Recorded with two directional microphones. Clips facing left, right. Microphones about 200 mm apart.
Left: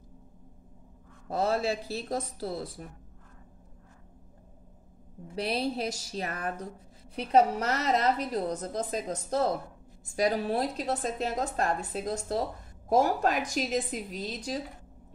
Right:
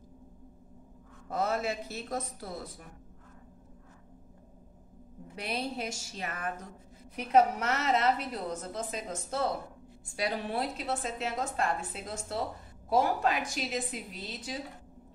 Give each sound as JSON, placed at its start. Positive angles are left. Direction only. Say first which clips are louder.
{"t": 1.3, "sound": "a woman's voice", "louder": "left 3 dB", "side_deg": 30}
{"t": 5.3, "sound": "a woman's voice", "louder": "left 5 dB", "side_deg": 35}